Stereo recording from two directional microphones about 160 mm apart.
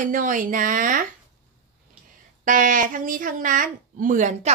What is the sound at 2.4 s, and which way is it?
Speech, 55° right (ahead or behind).